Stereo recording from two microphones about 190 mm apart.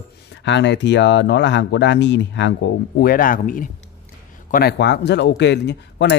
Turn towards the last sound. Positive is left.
turn(degrees=65)  # may be behind; listen again after turning